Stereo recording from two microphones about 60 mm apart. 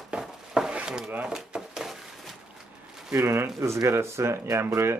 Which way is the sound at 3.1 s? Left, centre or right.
Right.